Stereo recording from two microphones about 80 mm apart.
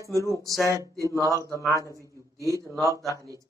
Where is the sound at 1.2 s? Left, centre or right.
Right.